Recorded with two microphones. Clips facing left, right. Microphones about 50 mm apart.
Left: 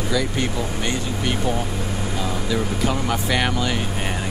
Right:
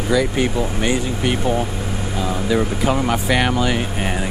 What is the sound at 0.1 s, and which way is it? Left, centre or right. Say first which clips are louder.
Speech: right 7 dB; centre.